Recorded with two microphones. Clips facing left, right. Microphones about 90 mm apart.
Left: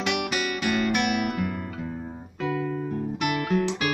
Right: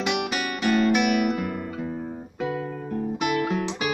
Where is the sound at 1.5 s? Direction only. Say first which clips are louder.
Right 2 dB; 10° right (ahead or behind).